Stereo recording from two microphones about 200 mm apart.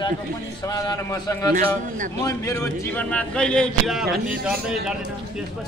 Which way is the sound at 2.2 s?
15° left (ahead or behind).